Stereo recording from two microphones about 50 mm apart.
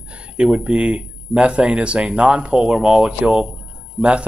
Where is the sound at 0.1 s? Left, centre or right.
Right.